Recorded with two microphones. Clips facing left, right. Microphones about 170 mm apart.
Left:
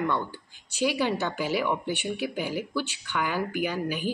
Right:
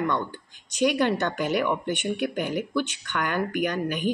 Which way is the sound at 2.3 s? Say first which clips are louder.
Right 3 dB; 55° right (ahead or behind).